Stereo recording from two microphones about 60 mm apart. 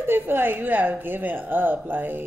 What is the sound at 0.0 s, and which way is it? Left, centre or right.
A woman's voice, right.